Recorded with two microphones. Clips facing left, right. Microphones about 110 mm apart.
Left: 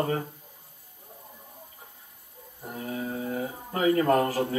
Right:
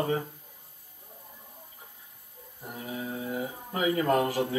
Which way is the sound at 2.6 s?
10° left (ahead or behind).